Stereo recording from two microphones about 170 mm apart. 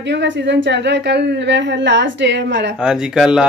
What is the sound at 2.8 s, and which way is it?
Speech, 5° right (ahead or behind).